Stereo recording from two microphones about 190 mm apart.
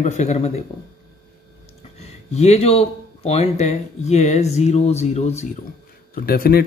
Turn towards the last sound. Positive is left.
turn(degrees=50)  # may be behind; listen again after turning